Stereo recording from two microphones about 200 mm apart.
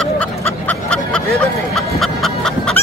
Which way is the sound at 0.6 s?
5° left (ahead or behind).